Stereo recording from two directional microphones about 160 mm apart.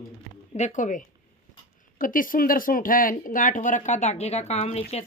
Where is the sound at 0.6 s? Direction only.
50° left (ahead or behind).